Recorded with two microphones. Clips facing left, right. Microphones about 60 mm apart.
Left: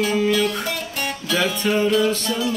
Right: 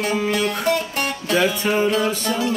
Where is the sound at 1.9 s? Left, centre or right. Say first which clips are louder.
Left 1 dB; right.